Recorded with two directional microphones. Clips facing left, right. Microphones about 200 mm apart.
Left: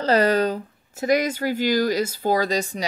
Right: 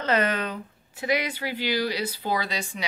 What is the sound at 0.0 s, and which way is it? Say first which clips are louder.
Speech: left 6 dB; 35° left (ahead or behind).